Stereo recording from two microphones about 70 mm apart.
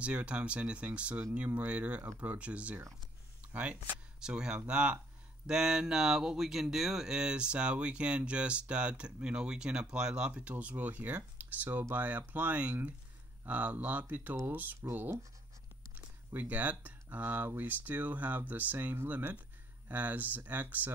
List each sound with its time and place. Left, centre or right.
0.0 s speech: centre
4.2 s speech: centre; by 15.1 s right
16.3 s speech: right